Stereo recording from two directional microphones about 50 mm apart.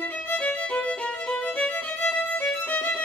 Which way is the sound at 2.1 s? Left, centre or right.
Left.